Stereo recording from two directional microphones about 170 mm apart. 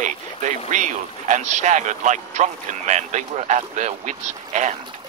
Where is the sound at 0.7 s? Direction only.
45° right (ahead or behind).